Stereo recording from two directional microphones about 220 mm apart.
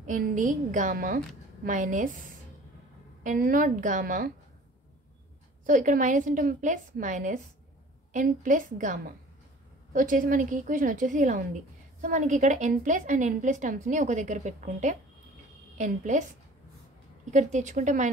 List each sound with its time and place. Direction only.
0.0 s a woman's voice: 35° right (ahead or behind)
3.3 s a woman's voice: 40° right (ahead or behind)
5.7 s a woman's voice: 35° right (ahead or behind)
17.3 s a woman's voice: 35° right (ahead or behind)